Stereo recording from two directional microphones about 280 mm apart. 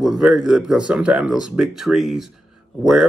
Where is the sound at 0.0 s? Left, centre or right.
Centre.